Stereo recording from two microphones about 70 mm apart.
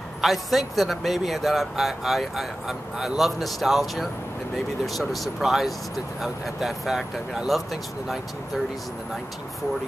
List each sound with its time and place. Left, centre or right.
0.2 s speech: centre